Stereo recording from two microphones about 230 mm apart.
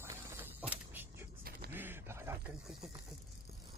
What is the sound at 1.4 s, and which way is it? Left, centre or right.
Creak, right.